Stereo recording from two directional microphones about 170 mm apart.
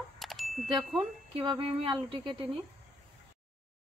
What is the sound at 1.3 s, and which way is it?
Speech, 30° right (ahead or behind).